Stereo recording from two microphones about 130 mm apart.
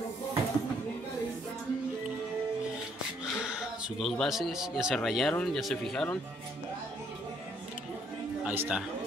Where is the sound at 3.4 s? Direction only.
5° right (ahead or behind).